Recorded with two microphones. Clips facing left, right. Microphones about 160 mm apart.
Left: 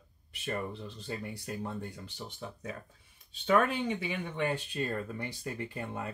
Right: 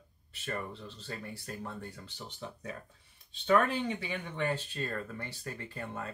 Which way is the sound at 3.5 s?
15° left (ahead or behind).